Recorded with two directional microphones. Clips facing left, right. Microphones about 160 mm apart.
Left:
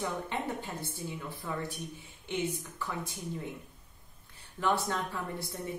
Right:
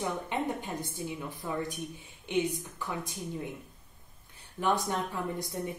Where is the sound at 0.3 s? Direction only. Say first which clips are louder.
Right 3 dB; 15° right (ahead or behind).